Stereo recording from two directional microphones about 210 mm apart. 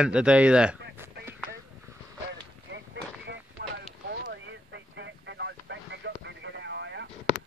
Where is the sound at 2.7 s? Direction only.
55° right (ahead or behind).